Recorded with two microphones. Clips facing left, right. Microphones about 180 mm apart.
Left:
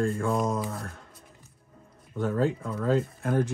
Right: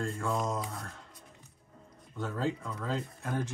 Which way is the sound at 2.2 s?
55° left (ahead or behind).